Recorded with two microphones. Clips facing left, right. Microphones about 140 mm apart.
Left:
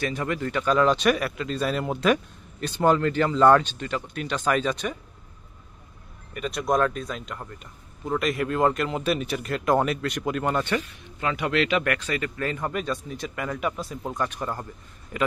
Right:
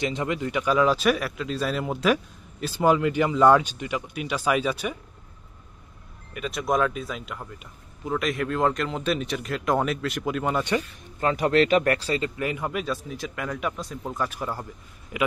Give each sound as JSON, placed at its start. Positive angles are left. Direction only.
{"t": 0.0, "sound": "speech", "side_deg": -20}
{"t": 6.3, "sound": "speech", "side_deg": 0}
{"t": 11.1, "sound": "speech", "side_deg": -40}
{"t": 12.4, "sound": "speech", "side_deg": -10}